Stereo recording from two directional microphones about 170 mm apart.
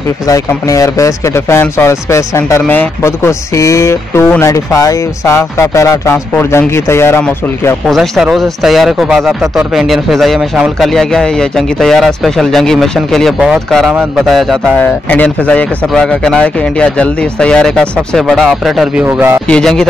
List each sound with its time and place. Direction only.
0.3 s speech: 20° left (ahead or behind)
7.8 s speech: centre (ahead or behind)
19.0 s a man's voice: 15° right (ahead or behind)
19.4 s speech: 5° left (ahead or behind)